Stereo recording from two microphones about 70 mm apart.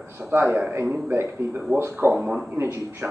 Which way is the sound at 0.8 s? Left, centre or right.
Right.